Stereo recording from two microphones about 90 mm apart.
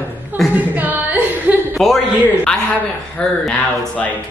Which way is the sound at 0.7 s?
20° right (ahead or behind).